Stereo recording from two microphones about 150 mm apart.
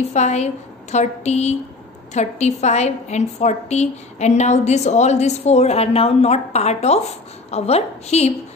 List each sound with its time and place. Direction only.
0.1 s a woman's voice: 50° left (ahead or behind)